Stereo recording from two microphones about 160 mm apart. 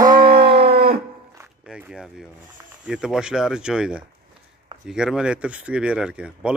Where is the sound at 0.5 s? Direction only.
35° right (ahead or behind).